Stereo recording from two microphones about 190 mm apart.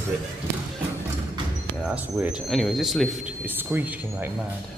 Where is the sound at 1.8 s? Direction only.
5° right (ahead or behind).